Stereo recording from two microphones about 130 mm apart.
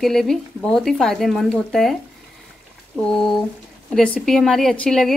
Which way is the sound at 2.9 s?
5° left (ahead or behind).